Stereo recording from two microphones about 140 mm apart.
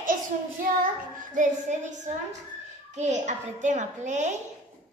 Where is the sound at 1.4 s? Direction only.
65° right (ahead or behind).